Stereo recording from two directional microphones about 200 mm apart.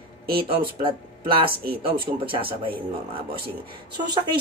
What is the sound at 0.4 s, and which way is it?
Speech, 25° right (ahead or behind).